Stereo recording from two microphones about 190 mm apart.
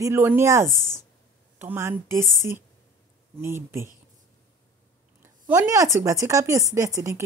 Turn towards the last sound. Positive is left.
turn(degrees=-15)  # may be behind; listen again after turning